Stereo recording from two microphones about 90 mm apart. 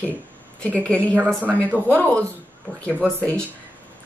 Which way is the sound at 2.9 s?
25° right (ahead or behind).